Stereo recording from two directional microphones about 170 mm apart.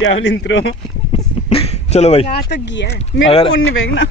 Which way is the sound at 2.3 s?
85° left.